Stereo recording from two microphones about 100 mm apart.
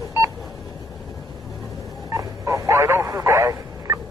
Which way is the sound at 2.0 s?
35° right (ahead or behind).